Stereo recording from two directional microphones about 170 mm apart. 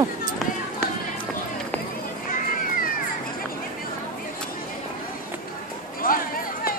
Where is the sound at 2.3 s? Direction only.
50° left (ahead or behind).